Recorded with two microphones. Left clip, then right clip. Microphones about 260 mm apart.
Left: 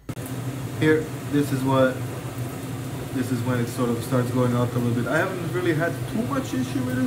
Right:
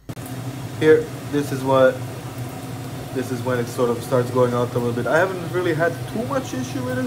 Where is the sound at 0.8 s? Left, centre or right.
Centre.